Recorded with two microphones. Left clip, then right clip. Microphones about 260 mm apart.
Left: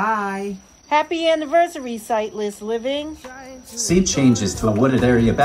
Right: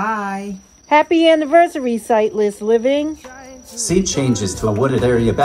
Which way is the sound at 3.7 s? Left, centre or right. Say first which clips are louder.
Right 1 dB; right.